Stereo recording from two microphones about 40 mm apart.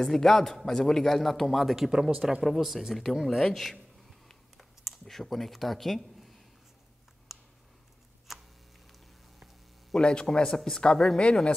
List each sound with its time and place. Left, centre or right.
0.0 s a man's voice: centre
5.0 s speech: centre
7.3 s a sound: centre
9.9 s a man's voice: left